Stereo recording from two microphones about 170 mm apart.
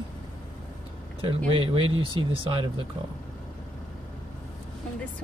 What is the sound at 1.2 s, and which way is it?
Speech, 30° right (ahead or behind).